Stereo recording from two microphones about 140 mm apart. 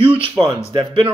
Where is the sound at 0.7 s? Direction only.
35° right (ahead or behind).